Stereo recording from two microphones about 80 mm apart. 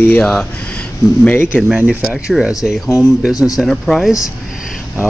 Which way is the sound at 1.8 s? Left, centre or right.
Centre.